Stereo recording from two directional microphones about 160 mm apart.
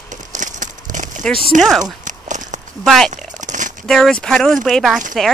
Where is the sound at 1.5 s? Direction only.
50° right (ahead or behind).